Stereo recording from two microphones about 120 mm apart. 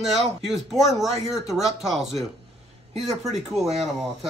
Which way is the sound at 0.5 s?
Centre (ahead or behind).